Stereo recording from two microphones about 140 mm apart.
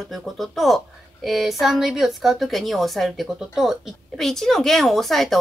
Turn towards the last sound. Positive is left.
turn(degrees=0)  # may be behind; listen again after turning